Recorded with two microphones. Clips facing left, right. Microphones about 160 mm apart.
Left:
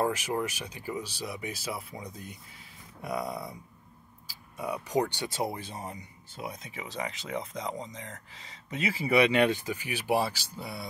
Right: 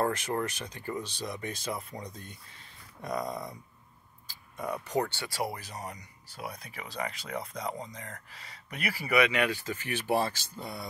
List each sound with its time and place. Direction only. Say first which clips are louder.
0.0 s speech: left 1 dB; 10° left (ahead or behind); by 9.6 s 30° left (ahead or behind)
9.6 s speech: even; 15° left (ahead or behind)